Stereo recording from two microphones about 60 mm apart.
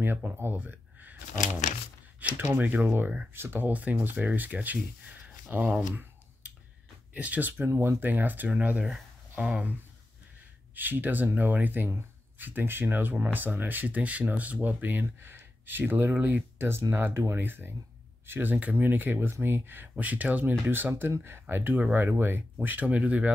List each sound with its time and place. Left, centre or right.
0.0 s speech: right
2.6 s speech: right
3.3 s speech: right
3.6 s speech: right
7.2 s speech: right
7.6 s speech: right